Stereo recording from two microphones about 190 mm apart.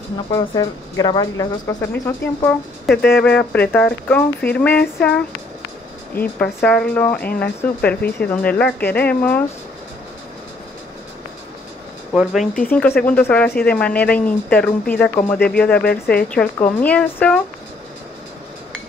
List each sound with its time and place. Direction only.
0.3 s speech: 20° left (ahead or behind)
12.1 s speech: centre (ahead or behind)
12.6 s speech: 10° left (ahead or behind)
15.8 s speech: 55° left (ahead or behind)
16.3 s speech: 5° left (ahead or behind)